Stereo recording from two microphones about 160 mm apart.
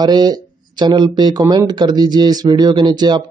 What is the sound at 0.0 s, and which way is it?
Speech, 25° right (ahead or behind).